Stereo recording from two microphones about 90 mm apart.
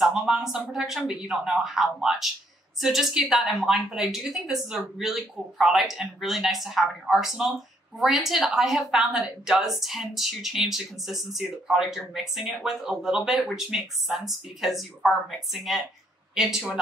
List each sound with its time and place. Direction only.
0.0 s speech: 5° right (ahead or behind)